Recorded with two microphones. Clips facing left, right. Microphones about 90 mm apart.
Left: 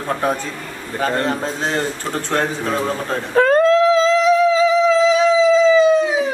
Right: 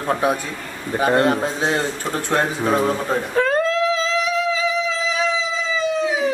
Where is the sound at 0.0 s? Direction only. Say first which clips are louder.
Even; 10° right (ahead or behind).